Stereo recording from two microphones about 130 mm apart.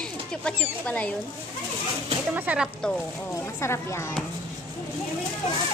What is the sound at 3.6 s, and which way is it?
Speech, 20° left (ahead or behind).